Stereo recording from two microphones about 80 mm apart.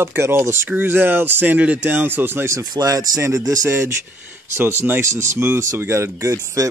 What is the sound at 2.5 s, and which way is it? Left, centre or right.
Speech, right.